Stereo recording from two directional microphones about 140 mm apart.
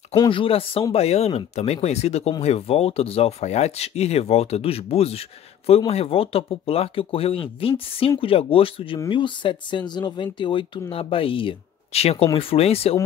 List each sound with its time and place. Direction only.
0.3 s speech: 40° left (ahead or behind)